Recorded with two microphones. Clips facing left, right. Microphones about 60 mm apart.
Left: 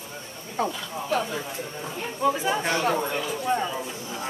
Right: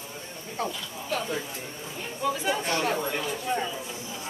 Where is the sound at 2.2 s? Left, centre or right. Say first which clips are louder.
Left 4 dB; left.